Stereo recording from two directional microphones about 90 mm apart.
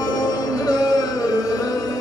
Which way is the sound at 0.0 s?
45° left (ahead or behind).